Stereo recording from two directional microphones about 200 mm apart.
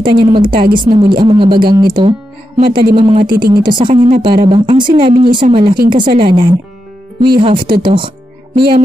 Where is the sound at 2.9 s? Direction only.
25° right (ahead or behind).